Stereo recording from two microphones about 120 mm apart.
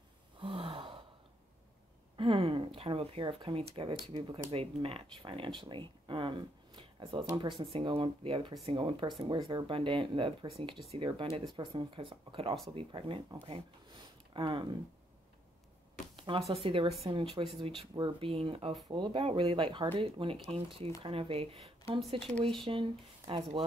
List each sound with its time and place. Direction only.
0.4 s gasp: 50° right (ahead or behind)
2.1 s speech: 45° right (ahead or behind)
13.9 s a sound: 45° right (ahead or behind)
16.3 s speech: 55° right (ahead or behind)